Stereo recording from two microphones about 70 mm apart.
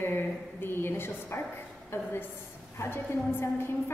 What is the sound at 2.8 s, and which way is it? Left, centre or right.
Speech, left.